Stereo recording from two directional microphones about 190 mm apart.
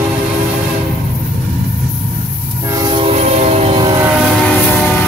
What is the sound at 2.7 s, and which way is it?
Train, 25° right (ahead or behind).